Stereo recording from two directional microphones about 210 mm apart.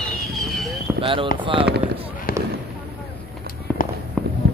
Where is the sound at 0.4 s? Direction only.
Centre (ahead or behind).